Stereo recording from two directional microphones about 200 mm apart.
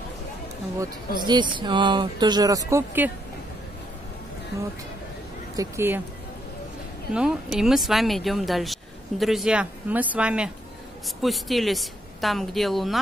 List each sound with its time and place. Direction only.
0.7 s speech: 20° right (ahead or behind)
5.6 s speech: 10° right (ahead or behind)
7.2 s speech: 5° right (ahead or behind)